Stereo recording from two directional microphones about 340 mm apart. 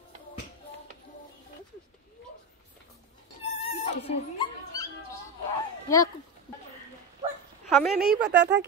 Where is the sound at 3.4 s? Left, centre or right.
Centre.